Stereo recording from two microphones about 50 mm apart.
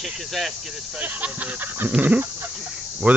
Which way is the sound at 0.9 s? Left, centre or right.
Right.